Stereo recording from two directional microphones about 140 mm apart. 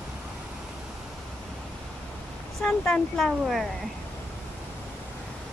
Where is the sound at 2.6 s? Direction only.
10° left (ahead or behind).